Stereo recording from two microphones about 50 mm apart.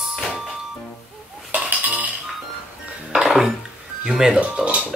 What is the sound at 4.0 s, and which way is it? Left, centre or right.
Speech, centre.